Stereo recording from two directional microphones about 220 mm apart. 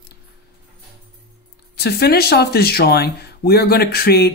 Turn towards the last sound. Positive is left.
turn(degrees=45)  # may be behind; listen again after turning